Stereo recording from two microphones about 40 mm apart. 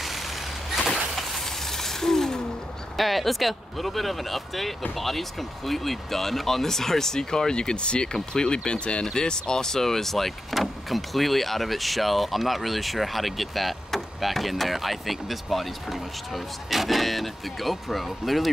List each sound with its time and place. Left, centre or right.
1.7 s a sound: centre
3.0 s speech: centre; by 9.0 s left
9.0 s speech: centre